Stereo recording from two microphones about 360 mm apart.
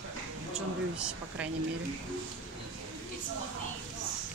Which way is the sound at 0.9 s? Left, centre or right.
Centre.